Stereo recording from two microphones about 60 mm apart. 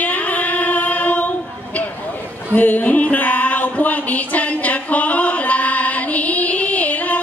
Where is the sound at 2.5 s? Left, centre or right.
Left.